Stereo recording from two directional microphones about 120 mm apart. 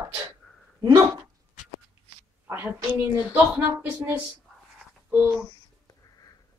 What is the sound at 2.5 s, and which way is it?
A woman's voice, 20° right (ahead or behind).